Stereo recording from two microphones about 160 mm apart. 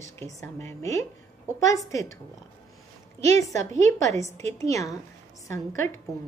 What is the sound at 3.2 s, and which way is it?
A woman's voice, 20° left (ahead or behind).